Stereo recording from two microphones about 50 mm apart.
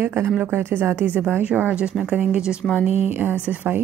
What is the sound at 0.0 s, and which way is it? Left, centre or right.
A woman's voice, right.